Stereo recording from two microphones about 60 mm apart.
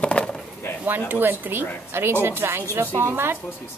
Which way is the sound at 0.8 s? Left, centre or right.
Right.